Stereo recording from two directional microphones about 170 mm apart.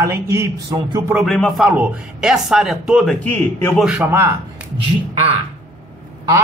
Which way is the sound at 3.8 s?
10° right (ahead or behind).